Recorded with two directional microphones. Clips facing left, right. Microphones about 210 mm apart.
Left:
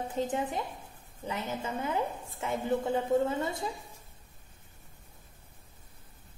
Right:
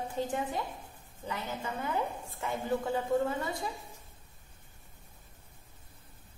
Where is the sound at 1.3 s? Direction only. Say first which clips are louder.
Left 2 dB; 25° left (ahead or behind).